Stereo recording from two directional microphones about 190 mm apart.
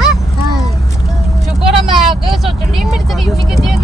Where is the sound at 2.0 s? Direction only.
Centre (ahead or behind).